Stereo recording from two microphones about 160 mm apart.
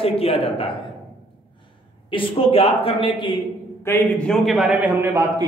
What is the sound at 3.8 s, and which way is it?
Speech, 15° left (ahead or behind).